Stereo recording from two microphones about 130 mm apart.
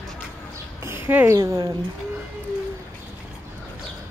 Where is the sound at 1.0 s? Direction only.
20° right (ahead or behind).